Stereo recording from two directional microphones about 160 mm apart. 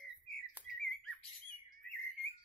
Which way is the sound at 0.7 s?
5° left (ahead or behind).